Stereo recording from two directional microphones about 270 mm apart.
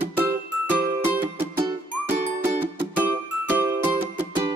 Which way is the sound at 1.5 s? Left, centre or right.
Right.